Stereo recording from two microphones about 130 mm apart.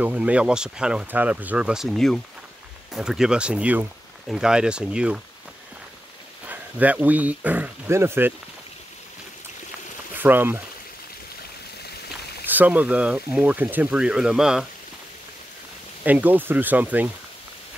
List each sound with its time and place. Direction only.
0.0 s speech: 10° right (ahead or behind)
6.4 s speech: 10° right (ahead or behind)
10.1 s speech: 15° right (ahead or behind)
12.4 s speech: 15° right (ahead or behind)
16.0 s speech: 10° right (ahead or behind)